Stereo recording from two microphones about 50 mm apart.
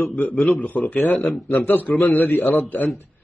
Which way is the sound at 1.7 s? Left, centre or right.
Left.